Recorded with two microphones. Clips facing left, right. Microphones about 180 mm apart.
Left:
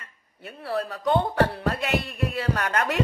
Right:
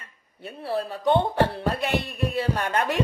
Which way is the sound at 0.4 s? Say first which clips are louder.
Right 1 dB; 25° right (ahead or behind).